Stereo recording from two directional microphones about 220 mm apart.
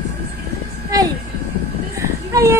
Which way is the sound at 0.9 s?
15° right (ahead or behind).